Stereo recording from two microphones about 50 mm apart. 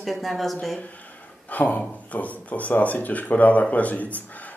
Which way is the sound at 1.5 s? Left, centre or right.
Left.